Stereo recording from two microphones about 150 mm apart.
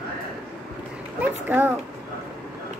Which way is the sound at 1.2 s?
15° right (ahead or behind).